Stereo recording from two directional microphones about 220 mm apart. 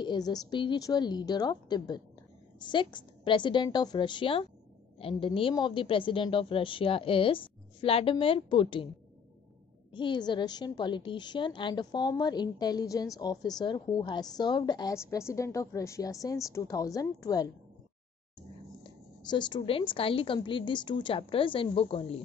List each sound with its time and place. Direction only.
0.0 s a woman's voice: 20° left (ahead or behind)
9.9 s a woman's voice: 20° left (ahead or behind)
18.8 s a woman's voice: 20° left (ahead or behind)